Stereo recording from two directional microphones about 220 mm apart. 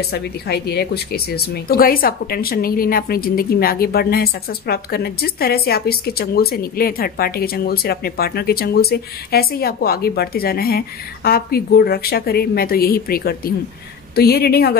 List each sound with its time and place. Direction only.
0.1 s a woman's voice: 45° left (ahead or behind)